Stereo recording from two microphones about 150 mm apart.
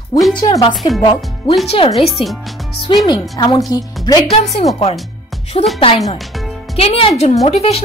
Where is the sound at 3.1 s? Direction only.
25° left (ahead or behind).